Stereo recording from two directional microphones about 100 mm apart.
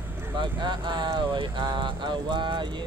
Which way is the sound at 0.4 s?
50° right (ahead or behind).